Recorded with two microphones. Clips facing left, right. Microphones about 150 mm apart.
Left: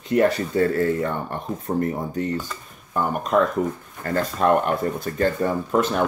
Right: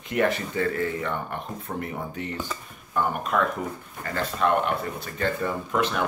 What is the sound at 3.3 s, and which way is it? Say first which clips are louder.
Speech: left 6 dB; 35° left (ahead or behind).